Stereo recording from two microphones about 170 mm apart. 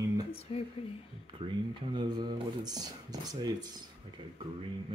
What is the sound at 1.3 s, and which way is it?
Speech, 30° right (ahead or behind).